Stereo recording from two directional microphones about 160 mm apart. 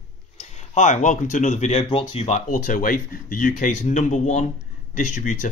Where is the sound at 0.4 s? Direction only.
45° left (ahead or behind).